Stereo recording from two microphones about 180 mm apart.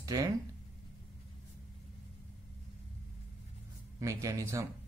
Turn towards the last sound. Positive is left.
turn(degrees=-20)  # may be behind; listen again after turning